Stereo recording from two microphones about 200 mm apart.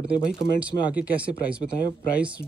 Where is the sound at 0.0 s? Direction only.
5° right (ahead or behind).